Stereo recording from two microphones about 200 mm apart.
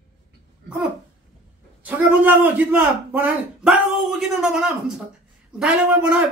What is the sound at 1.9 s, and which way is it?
A man's voice, 10° right (ahead or behind).